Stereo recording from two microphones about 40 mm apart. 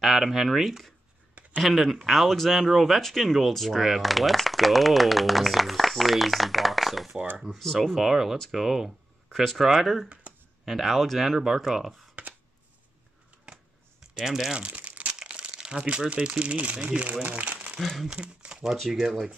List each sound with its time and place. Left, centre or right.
0.0 s speech: centre
8.0 s speech: centre
9.4 s speech: centre
9.7 s speech: centre
10.3 s computer keyboard: right
10.6 s speech: centre
14.1 s speech: centre
14.7 s crumpling: right
15.1 s speech: right
17.4 s crumpling: right
17.7 s speech: centre
18.1 s crumpling: right
18.9 s speech: centre